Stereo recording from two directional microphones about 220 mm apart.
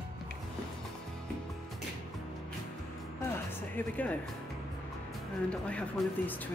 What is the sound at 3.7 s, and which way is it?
Speech, 10° left (ahead or behind).